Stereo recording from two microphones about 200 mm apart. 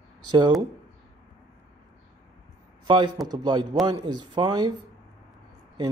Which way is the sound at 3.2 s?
20° right (ahead or behind).